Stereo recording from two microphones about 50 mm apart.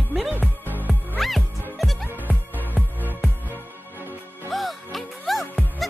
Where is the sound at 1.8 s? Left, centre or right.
Centre.